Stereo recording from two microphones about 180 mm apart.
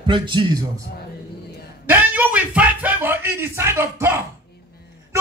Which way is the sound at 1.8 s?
10° right (ahead or behind).